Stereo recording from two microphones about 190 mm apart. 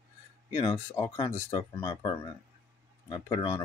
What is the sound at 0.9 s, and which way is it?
Speech, 15° left (ahead or behind).